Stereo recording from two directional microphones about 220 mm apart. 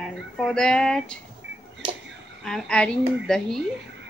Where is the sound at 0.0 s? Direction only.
Centre (ahead or behind).